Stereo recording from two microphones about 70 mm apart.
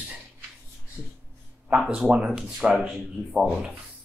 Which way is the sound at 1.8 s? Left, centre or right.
Centre.